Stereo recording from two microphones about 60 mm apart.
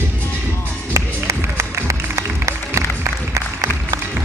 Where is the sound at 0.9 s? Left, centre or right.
Right.